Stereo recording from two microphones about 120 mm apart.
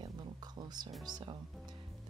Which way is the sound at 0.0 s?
35° right (ahead or behind).